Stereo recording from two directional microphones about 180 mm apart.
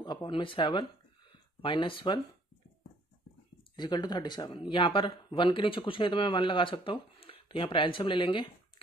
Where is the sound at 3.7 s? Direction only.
25° left (ahead or behind).